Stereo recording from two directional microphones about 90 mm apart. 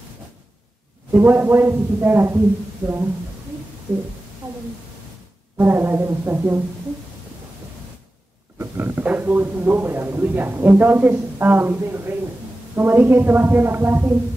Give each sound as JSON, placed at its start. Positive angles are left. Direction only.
{"t": 1.1, "sound": "speech", "side_deg": -20}
{"t": 5.6, "sound": "speech", "side_deg": -25}
{"t": 8.5, "sound": "speech", "side_deg": -25}